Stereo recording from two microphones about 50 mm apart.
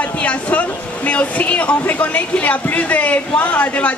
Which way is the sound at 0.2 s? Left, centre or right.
Left.